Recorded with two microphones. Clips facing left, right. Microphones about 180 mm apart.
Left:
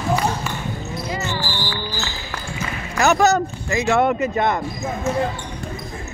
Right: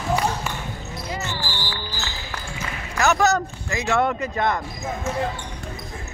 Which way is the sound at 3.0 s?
20° left (ahead or behind).